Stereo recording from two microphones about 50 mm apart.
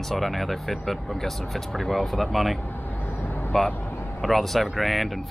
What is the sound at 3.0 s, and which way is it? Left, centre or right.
Vehicle, left.